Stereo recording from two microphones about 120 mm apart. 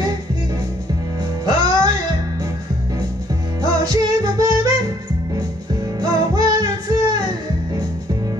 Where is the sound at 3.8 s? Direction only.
30° right (ahead or behind).